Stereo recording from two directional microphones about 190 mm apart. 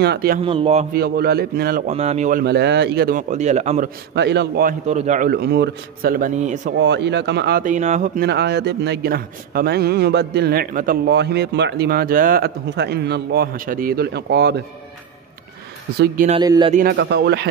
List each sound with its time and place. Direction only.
0.0 s speech: 55° right (ahead or behind)
0.4 s speech: 30° right (ahead or behind)
0.9 s speech: 55° right (ahead or behind)
1.9 s speech: 35° right (ahead or behind)
2.4 s speech: 60° right (ahead or behind)
3.2 s speech: 40° right (ahead or behind)
4.1 s speech: 65° right (ahead or behind)
4.8 s a man's voice: 35° right (ahead or behind)
6.8 s speech: 65° right (ahead or behind); by 8.1 s 40° right (ahead or behind)
8.2 s speech: 60° right (ahead or behind)
11.1 s speech: 60° right (ahead or behind)
16.3 s speech: 25° right (ahead or behind)
16.9 s speech: 65° right (ahead or behind)